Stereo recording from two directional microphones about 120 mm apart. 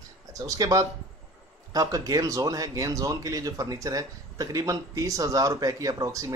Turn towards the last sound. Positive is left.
turn(degrees=-25)  # may be behind; listen again after turning